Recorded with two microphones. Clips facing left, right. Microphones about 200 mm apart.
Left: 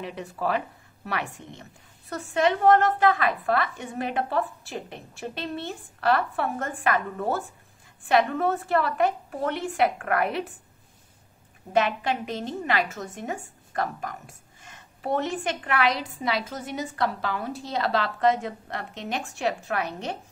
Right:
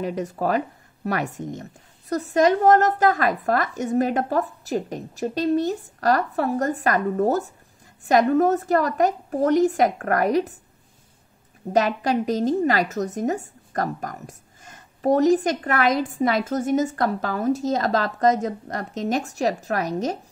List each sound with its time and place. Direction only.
0.0 s a woman's voice: 40° right (ahead or behind)
11.7 s a woman's voice: 40° right (ahead or behind)